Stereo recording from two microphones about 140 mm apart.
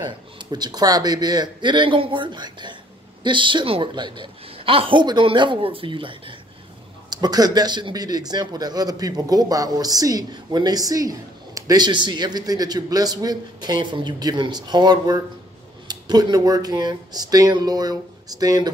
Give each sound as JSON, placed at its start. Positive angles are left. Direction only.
{"t": 0.4, "sound": "a woman's voice", "side_deg": -30}